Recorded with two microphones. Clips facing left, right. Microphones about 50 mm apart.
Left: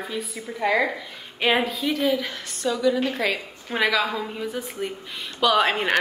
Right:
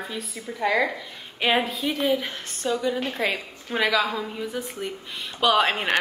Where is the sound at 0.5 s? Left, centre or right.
Centre.